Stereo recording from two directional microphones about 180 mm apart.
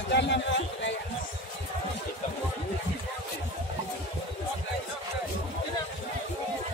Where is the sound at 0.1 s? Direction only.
75° left (ahead or behind).